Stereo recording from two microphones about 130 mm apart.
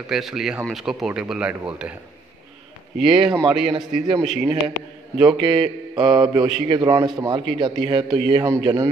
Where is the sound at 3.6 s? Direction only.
45° right (ahead or behind).